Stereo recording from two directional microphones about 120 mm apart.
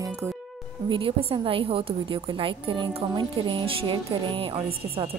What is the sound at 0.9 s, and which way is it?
A woman's voice, 50° right (ahead or behind).